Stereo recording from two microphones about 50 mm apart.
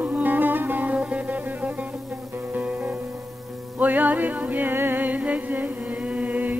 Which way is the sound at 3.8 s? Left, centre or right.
Right.